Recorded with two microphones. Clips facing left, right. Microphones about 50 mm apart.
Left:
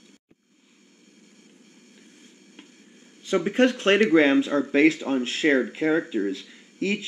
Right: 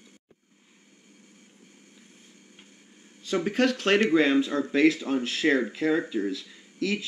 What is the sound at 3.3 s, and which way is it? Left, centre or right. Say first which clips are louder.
Speech: left 4 dB; left.